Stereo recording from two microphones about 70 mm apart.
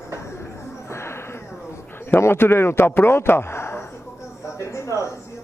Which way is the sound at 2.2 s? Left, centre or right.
Left.